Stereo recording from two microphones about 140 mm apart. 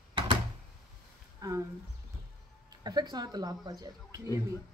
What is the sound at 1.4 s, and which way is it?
Speech, 25° right (ahead or behind).